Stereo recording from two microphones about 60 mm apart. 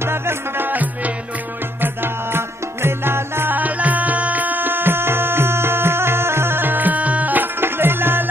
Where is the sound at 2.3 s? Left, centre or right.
Right.